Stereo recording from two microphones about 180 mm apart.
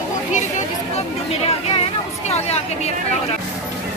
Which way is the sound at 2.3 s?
35° left (ahead or behind).